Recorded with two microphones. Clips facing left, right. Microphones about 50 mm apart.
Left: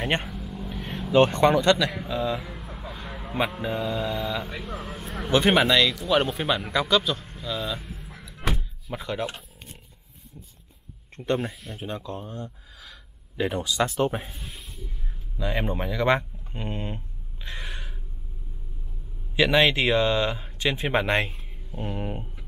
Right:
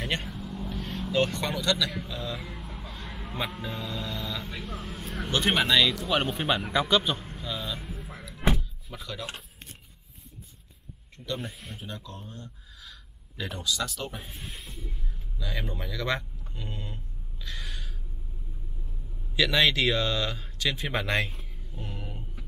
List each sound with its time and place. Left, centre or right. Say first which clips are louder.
0.2 s vehicle: left 1 dB; centre
1.1 s speech: left 9 dB; left
2.3 s vehicle: left 5 dB; centre
2.8 s a sound: left 4 dB; centre
3.5 s a man's voice: left 7 dB; centre
7.2 s a sound: left 4 dB; centre
8.5 s door: left 6 dB; left
11.1 s speech: left 8 dB; left
11.7 s speech: left 7 dB; left
14.3 s speech: even; centre
15.3 s a sound: left 8 dB; left
19.3 s speech: left 4 dB; left